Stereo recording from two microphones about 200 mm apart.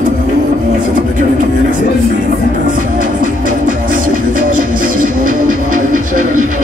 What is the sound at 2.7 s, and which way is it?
Music, 40° right (ahead or behind).